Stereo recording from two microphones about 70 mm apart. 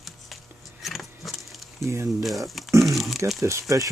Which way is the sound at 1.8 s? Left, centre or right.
Right.